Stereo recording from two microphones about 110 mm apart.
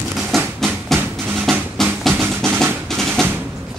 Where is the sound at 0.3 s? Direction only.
Centre (ahead or behind).